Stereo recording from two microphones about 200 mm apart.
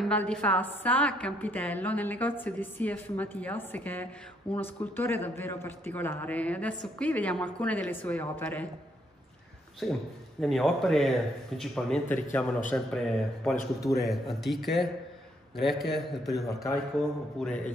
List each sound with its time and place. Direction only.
0.0 s a woman's voice: 5° left (ahead or behind)
9.8 s a man's voice: centre (ahead or behind)